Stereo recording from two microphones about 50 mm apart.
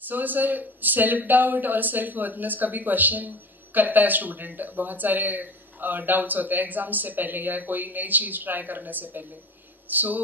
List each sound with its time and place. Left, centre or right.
0.0 s a man's voice: right